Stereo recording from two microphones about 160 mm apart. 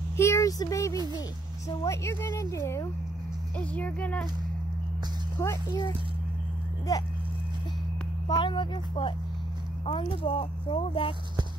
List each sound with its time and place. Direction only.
0.2 s speech: 20° left (ahead or behind)
5.4 s speech: 15° left (ahead or behind)
6.9 s speech: 20° left (ahead or behind)
8.3 s speech: 30° left (ahead or behind)